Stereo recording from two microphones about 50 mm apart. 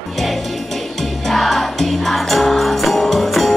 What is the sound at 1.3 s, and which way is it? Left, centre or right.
Music, centre.